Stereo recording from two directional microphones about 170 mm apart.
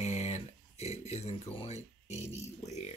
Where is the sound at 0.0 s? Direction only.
40° left (ahead or behind).